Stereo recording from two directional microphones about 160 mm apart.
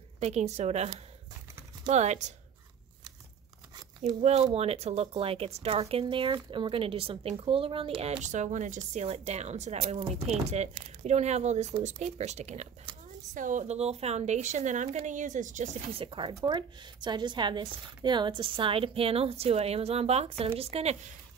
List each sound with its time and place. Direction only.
0.2 s a woman's voice: 45° right (ahead or behind)
4.2 s speech: 40° right (ahead or behind)
12.9 s a sound: 30° right (ahead or behind)
13.3 s a woman's voice: 55° right (ahead or behind)
15.9 s speech: 35° right (ahead or behind)